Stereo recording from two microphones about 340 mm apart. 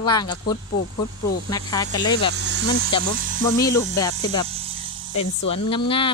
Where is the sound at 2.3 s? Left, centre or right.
Right.